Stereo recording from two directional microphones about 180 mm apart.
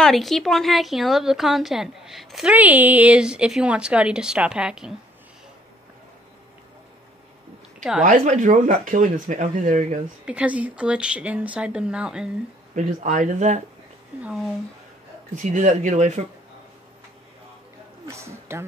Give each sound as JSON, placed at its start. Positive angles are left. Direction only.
{"t": 0.0, "sound": "a woman's voice", "side_deg": 0}
{"t": 8.0, "sound": "speech", "side_deg": -45}
{"t": 10.2, "sound": "speech", "side_deg": -5}
{"t": 12.7, "sound": "speech", "side_deg": -45}
{"t": 14.2, "sound": "a woman's voice", "side_deg": 0}
{"t": 15.3, "sound": "speech", "side_deg": -45}
{"t": 18.0, "sound": "a man's voice", "side_deg": -15}